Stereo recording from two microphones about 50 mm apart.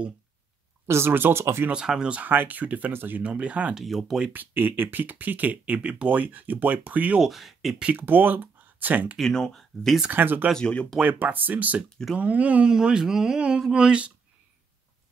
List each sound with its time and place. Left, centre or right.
0.8 s speech: right
1.7 s speech: centre
2.1 s speech: right
2.9 s speech: right
3.2 s speech: right
3.7 s speech: centre
4.3 s speech: right
7.2 s speech: centre
7.9 s speech: right
9.2 s speech: centre
10.1 s speech: right
10.6 s speech: left
11.0 s speech: right
12.7 s speech: centre